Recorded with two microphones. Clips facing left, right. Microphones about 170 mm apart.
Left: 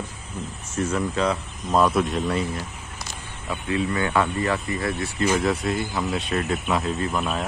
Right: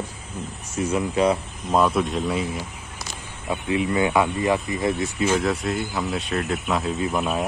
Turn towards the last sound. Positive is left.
turn(degrees=-15)  # may be behind; listen again after turning